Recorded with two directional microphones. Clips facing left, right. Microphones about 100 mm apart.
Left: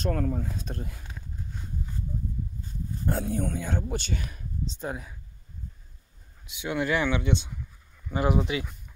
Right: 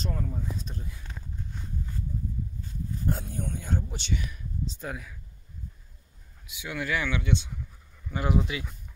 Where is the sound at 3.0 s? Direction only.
90° left; by 4.0 s 75° left (ahead or behind).